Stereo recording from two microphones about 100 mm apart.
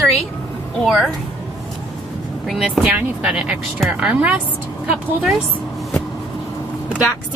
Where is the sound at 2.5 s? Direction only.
5° right (ahead or behind).